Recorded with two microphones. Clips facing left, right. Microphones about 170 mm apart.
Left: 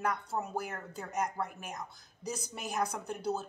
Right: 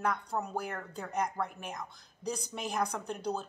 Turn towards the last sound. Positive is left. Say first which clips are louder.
# even
turn(degrees=5)  # may be behind; listen again after turning